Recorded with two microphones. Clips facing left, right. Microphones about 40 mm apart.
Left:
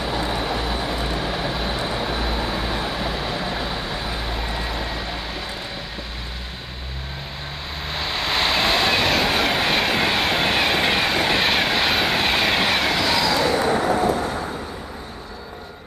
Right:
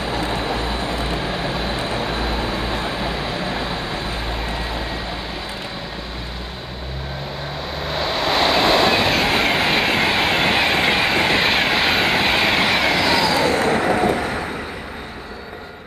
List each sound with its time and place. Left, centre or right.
0.2 s vehicle: centre
0.5 s vehicle: centre
1.8 s vehicle: right
2.0 s vehicle: centre
7.8 s waves: centre
9.8 s train: centre
11.2 s vehicle: centre
13.5 s vehicle: right